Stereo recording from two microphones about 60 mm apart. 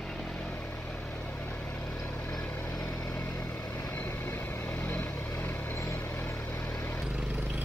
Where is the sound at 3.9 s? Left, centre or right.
Left.